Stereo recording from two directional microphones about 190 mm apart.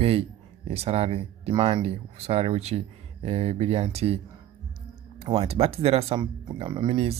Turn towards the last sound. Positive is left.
turn(degrees=-30)  # may be behind; listen again after turning